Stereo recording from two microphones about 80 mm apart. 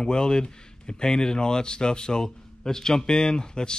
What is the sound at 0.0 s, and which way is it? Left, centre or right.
Speech, centre.